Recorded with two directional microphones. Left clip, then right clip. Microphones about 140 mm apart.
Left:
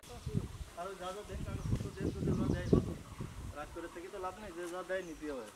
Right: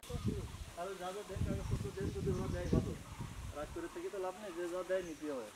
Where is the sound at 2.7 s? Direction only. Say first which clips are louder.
Left 8 dB; 35° left (ahead or behind).